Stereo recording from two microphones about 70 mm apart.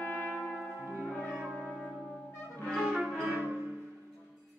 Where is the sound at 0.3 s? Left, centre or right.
Centre.